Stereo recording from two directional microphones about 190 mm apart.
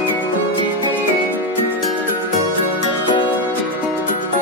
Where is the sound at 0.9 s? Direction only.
10° right (ahead or behind).